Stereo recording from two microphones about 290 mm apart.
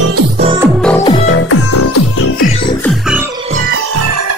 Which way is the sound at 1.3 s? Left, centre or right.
Left.